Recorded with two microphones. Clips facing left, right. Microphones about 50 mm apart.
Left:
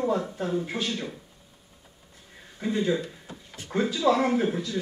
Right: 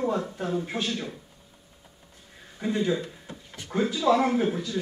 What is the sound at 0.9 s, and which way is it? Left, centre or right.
Speech, centre.